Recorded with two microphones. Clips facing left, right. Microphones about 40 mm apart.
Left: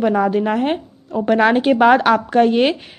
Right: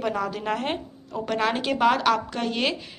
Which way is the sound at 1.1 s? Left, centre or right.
Left.